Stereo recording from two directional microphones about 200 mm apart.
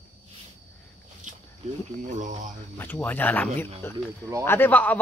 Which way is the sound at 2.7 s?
10° left (ahead or behind).